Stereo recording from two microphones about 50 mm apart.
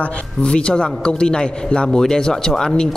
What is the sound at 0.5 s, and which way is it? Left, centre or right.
A man's voice, centre.